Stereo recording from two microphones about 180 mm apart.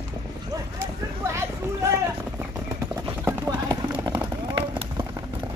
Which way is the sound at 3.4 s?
20° right (ahead or behind).